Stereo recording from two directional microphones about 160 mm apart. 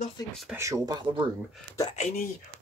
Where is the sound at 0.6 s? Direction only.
20° right (ahead or behind).